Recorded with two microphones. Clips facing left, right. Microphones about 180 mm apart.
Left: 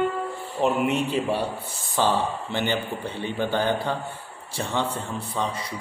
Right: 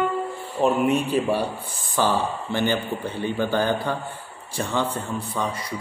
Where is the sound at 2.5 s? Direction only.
20° left (ahead or behind).